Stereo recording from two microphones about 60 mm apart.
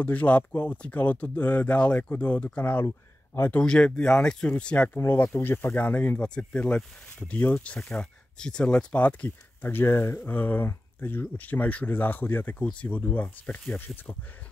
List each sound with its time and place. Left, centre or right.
0.0 s speech: left
4.9 s speech: left
9.7 s speech: left